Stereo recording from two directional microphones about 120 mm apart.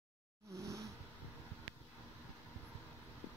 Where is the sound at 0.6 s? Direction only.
25° right (ahead or behind).